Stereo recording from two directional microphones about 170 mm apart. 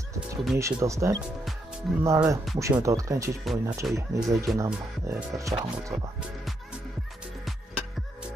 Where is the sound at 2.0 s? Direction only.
15° right (ahead or behind).